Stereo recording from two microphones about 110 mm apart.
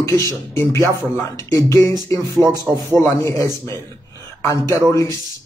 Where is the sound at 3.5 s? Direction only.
35° right (ahead or behind).